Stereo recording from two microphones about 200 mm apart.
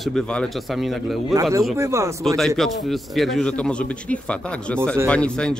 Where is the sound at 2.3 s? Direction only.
Centre (ahead or behind).